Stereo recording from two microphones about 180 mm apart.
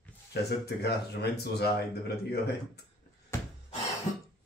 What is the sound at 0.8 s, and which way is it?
Speech, 65° left (ahead or behind).